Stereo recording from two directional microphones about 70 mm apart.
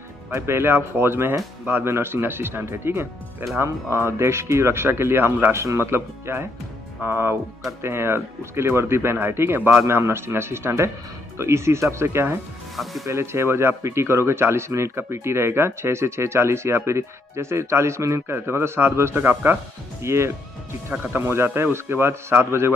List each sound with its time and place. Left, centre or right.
0.3 s speech: right
21.0 s speech: right